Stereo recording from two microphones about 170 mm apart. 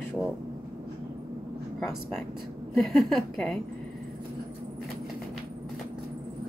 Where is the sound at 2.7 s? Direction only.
Centre (ahead or behind).